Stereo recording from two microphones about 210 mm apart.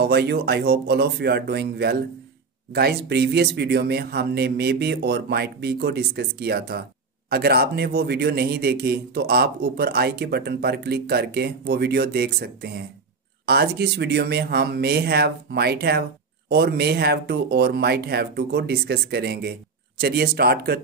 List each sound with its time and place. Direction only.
0.0 s speech: 50° right (ahead or behind)